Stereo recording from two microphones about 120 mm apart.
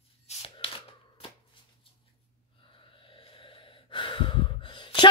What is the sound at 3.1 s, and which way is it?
Gasp, 45° left (ahead or behind).